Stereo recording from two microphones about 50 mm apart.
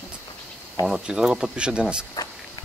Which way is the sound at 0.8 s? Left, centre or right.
Centre.